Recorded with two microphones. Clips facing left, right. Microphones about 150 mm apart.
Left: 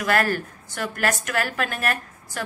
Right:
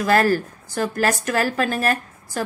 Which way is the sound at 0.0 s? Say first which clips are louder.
Right 5 dB; 35° right (ahead or behind).